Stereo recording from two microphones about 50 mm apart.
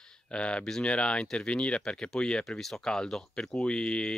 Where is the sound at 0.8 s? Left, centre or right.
Left.